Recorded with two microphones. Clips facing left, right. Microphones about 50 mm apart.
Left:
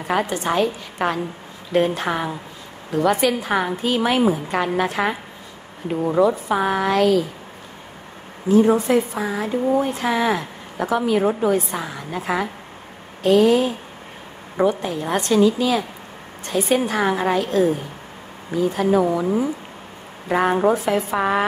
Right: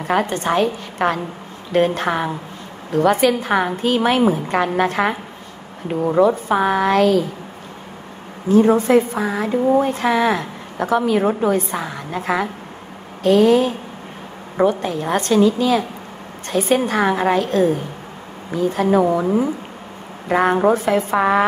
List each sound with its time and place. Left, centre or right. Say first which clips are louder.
0.1 s speech: right 3 dB; right
6.2 s speech: right 3 dB; right
8.5 s speech: right 2 dB; right
12.1 s speech: right 2 dB; right
13.3 s speech: right 2 dB; right
17.0 s speech: right 3 dB; right
20.2 s a woman's voice: right 2 dB; right
20.7 s speech: right 3 dB; right